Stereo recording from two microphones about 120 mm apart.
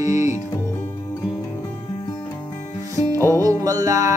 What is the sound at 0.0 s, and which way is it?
Music, 30° right (ahead or behind).